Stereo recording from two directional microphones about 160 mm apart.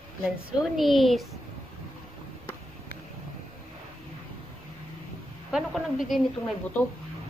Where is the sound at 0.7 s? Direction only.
Centre (ahead or behind).